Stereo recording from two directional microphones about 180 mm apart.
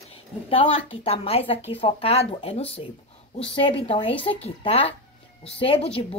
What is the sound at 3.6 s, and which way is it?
A woman's voice, 30° left (ahead or behind).